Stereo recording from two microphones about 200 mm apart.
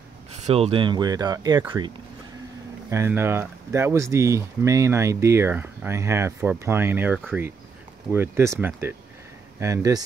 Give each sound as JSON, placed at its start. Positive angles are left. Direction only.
{"t": 0.4, "sound": "speech", "side_deg": -30}
{"t": 2.9, "sound": "speech", "side_deg": -15}